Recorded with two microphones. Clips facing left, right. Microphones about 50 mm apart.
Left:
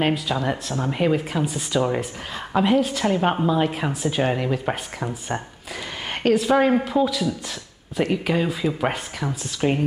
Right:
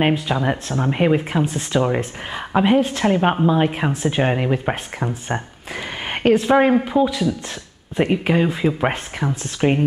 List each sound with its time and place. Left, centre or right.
0.0 s speech: right